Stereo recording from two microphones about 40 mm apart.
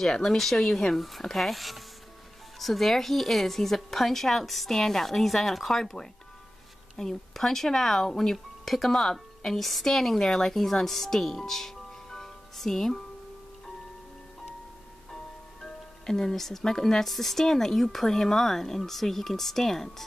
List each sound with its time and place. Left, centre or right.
0.0 s a woman's voice: centre
15.6 s speech: centre